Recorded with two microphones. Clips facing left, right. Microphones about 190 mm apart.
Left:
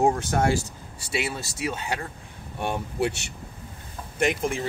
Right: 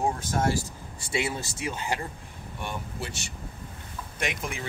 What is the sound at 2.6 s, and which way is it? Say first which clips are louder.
Speech: left 10 dB; 65° left (ahead or behind).